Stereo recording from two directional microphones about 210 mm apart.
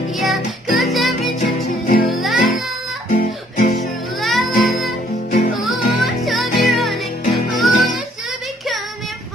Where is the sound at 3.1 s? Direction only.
40° left (ahead or behind).